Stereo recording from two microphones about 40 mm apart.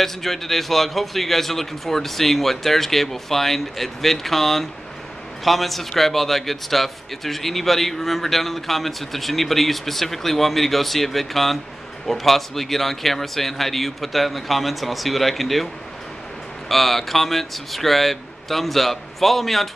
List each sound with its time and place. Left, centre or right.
0.0 s a man's voice: centre